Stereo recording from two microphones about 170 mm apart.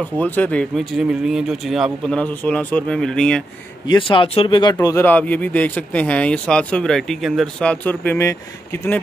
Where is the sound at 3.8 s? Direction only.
30° left (ahead or behind).